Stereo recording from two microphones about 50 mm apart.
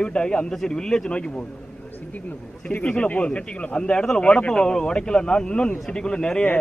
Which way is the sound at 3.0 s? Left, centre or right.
Left.